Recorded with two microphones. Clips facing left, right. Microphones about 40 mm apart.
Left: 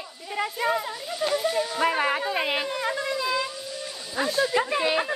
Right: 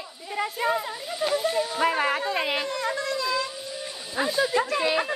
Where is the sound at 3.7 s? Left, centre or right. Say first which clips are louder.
Right 2 dB; centre.